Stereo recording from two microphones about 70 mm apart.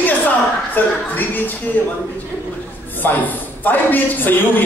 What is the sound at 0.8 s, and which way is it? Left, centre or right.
Speech, left.